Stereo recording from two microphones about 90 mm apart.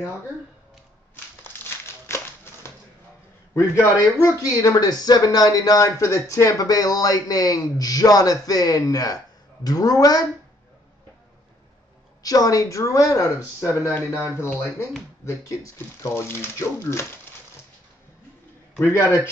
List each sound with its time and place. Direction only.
1.1 s a sound: 25° left (ahead or behind)
3.5 s speech: 30° left (ahead or behind)
12.2 s speech: 45° left (ahead or behind)
18.8 s speech: 30° left (ahead or behind)